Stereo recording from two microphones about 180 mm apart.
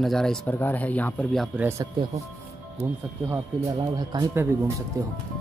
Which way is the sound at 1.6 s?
20° right (ahead or behind).